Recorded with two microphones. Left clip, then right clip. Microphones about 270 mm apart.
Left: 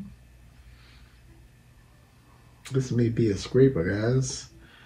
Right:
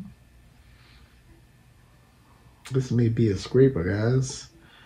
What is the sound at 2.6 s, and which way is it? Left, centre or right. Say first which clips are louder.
Speech: right 1 dB; right.